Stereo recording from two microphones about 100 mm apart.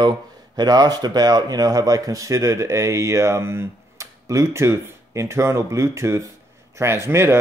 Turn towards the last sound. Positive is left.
turn(degrees=-25)  # may be behind; listen again after turning